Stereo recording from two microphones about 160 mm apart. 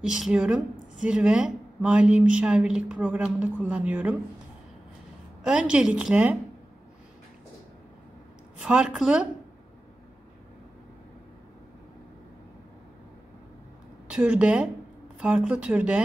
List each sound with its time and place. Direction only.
0.0 s a woman's voice: 5° right (ahead or behind)
5.4 s a woman's voice: 5° right (ahead or behind)
8.5 s a woman's voice: 5° right (ahead or behind)
14.0 s a woman's voice: 5° right (ahead or behind)